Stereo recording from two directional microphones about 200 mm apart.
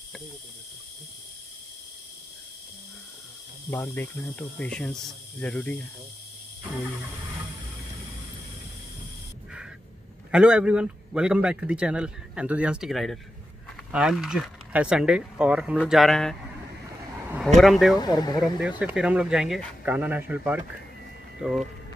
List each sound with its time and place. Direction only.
3.7 s speech: 10° left (ahead or behind)
10.3 s speech: 5° right (ahead or behind)
17.6 s speech: centre (ahead or behind)
17.9 s speech: 20° left (ahead or behind)
18.4 s speech: 5° right (ahead or behind)